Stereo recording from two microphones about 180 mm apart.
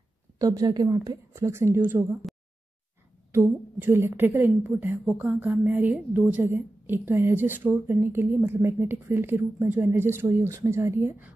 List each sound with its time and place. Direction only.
0.4 s a woman's voice: 20° right (ahead or behind)
2.3 s a sound: centre (ahead or behind)
3.3 s a woman's voice: 15° right (ahead or behind)